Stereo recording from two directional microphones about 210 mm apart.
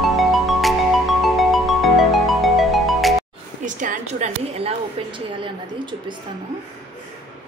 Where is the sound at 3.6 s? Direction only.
35° right (ahead or behind).